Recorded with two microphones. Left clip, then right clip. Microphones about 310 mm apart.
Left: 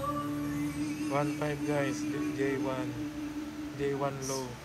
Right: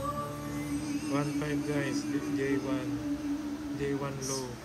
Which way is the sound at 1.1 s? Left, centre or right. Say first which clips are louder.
Left 1 dB; centre.